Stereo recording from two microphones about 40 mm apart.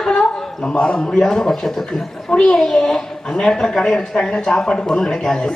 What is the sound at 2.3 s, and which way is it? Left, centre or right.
A woman's voice, left.